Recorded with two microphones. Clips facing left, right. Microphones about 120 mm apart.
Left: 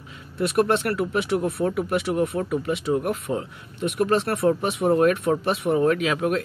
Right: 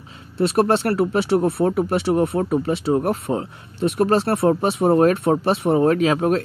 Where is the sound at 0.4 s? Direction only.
30° right (ahead or behind).